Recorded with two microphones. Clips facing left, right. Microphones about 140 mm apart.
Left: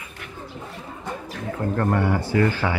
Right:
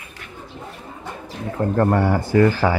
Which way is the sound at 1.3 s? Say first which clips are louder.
Right 5 dB; 35° right (ahead or behind).